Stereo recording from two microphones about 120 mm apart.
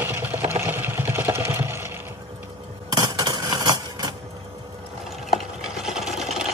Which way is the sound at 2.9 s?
35° right (ahead or behind).